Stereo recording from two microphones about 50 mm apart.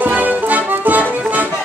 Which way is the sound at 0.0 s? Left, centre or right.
Right.